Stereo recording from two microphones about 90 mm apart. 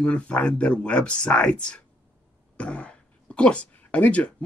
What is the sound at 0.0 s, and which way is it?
Speech, 10° left (ahead or behind).